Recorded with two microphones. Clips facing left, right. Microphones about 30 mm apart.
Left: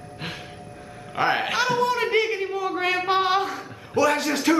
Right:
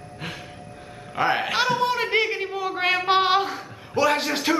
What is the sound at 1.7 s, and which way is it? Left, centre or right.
Speech, centre.